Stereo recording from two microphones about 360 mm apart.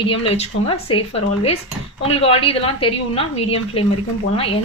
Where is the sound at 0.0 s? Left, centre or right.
Centre.